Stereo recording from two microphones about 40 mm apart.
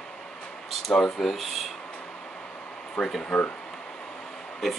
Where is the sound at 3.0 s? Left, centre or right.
Left.